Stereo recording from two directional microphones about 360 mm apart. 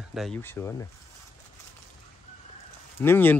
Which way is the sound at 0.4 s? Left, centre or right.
Centre.